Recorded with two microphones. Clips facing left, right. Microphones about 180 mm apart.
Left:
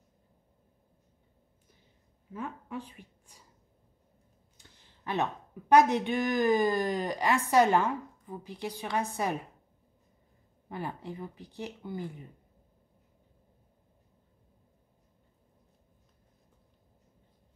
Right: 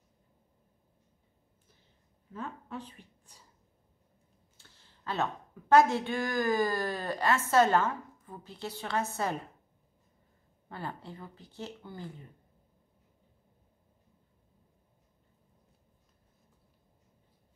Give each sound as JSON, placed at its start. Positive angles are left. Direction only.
{"t": 2.3, "sound": "a woman's voice", "side_deg": 10}
{"t": 4.6, "sound": "a woman's voice", "side_deg": 15}
{"t": 10.7, "sound": "a woman's voice", "side_deg": 15}